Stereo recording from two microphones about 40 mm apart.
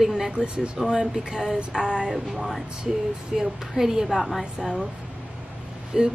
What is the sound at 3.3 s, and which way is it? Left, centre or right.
A woman's voice, centre.